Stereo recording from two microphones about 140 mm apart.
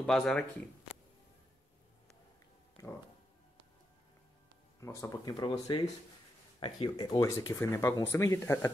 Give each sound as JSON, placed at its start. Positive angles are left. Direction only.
{"t": 0.0, "sound": "speech", "side_deg": 5}
{"t": 4.7, "sound": "speech", "side_deg": 25}